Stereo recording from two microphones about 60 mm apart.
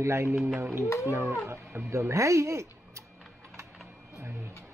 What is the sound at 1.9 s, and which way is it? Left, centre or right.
Speech, right.